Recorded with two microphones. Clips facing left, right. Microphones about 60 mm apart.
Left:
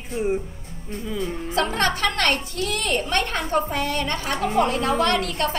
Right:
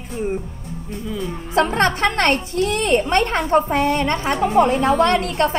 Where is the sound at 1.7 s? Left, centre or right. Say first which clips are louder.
Right 5 dB; right.